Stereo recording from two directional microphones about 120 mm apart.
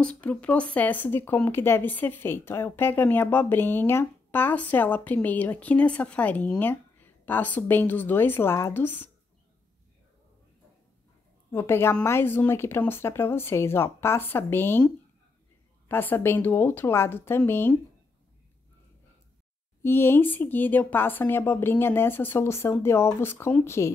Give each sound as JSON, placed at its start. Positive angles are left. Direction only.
{"t": 0.0, "sound": "speech", "side_deg": 10}
{"t": 11.5, "sound": "a woman's voice", "side_deg": 20}
{"t": 15.9, "sound": "a woman's voice", "side_deg": 15}
{"t": 19.8, "sound": "a woman's voice", "side_deg": 20}